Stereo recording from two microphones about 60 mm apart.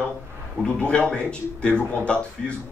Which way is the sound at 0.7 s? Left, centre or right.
Centre.